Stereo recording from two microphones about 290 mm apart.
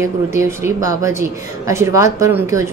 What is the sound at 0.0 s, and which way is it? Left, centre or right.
A woman's voice, centre.